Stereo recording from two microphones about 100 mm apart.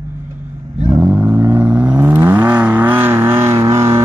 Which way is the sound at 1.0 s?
20° right (ahead or behind).